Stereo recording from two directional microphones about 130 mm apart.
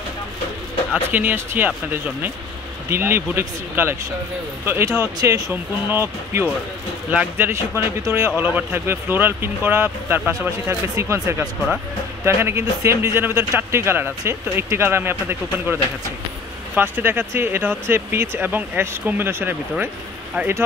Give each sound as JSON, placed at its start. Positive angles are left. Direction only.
{"t": 1.1, "sound": "speech", "side_deg": -15}
{"t": 2.9, "sound": "speech", "side_deg": -15}